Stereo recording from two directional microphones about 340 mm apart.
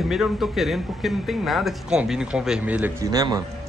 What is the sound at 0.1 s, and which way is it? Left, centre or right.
A man's voice, centre.